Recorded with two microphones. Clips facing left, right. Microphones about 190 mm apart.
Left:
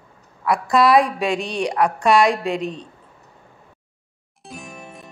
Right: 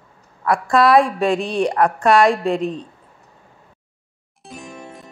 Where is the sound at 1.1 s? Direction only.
35° right (ahead or behind).